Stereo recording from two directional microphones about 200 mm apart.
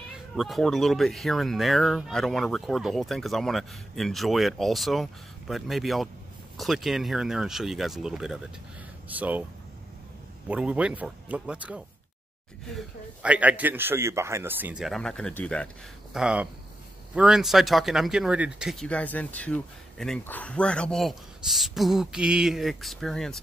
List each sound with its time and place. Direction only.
0.4 s speech: centre (ahead or behind)
10.5 s speech: 5° right (ahead or behind)